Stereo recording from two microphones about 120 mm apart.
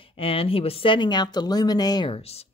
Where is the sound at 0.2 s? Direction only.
50° left (ahead or behind); by 2.0 s 35° left (ahead or behind).